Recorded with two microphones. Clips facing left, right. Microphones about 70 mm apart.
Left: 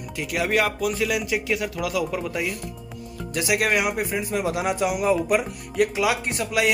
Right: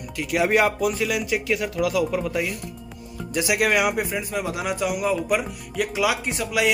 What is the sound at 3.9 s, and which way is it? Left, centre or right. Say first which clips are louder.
Speech: even; centre.